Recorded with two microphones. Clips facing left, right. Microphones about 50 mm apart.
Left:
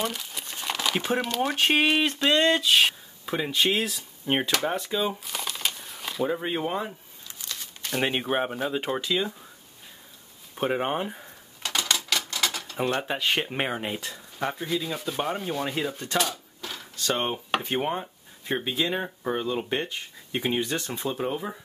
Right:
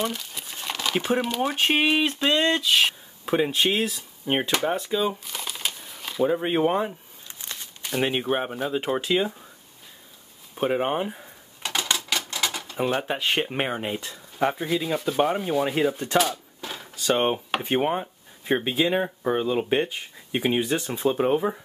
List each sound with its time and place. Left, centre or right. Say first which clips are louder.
0.0 s speech: right 2 dB; centre
3.3 s speech: right 3 dB; centre
5.1 s crumpling: left 1 dB; centre
6.4 s a sound: right 6 dB; right
7.8 s speech: right 2 dB; centre
9.0 s speech: right 4 dB; centre
10.5 s typewriter: right 2 dB; centre
12.1 s speech: even; centre
16.2 s a sound: right 4 dB; centre
17.7 s speech: right 4 dB; centre
21.1 s speech: right 8 dB; right